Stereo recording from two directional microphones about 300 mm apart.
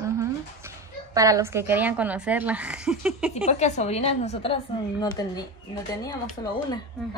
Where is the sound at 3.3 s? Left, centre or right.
Left.